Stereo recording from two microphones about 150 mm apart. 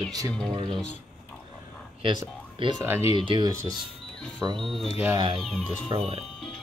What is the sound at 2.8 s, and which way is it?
Speech, 15° right (ahead or behind).